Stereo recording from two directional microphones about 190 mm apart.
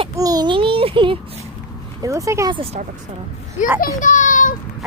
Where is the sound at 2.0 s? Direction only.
15° right (ahead or behind).